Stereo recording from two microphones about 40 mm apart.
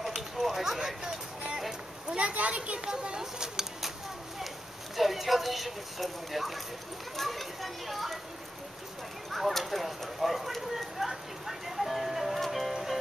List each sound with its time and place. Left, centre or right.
0.4 s a sound: centre
0.7 s speech: centre
2.1 s a child's voice: right; by 3.9 s centre
4.9 s speech: centre
9.3 s clip-clop: centre